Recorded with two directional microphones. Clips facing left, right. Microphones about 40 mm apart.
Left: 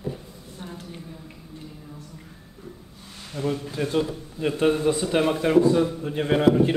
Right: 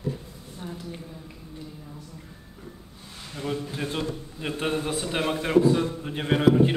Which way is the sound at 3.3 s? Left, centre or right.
Centre.